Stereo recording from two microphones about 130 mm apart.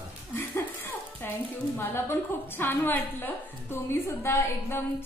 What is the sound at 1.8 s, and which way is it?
A woman's voice, 15° left (ahead or behind).